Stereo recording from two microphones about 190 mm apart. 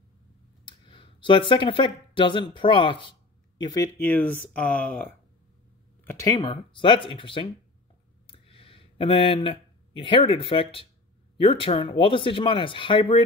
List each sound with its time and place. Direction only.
0.7 s speech: 25° left (ahead or behind); by 5.0 s 10° left (ahead or behind)
6.0 s speech: 15° left (ahead or behind)
8.3 s a sound: 30° left (ahead or behind)
11.3 s speech: 30° left (ahead or behind)